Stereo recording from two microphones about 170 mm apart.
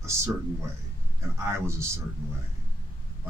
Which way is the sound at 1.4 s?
15° right (ahead or behind).